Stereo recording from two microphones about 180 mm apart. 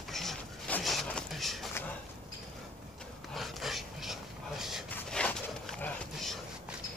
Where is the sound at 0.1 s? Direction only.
Centre (ahead or behind).